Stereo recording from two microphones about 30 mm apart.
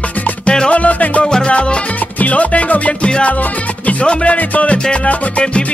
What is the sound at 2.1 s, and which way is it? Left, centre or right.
Music, left.